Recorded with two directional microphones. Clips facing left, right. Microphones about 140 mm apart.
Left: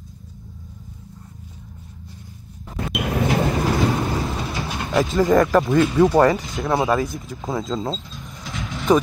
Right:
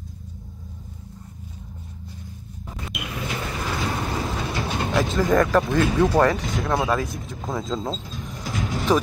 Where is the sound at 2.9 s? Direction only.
60° left (ahead or behind).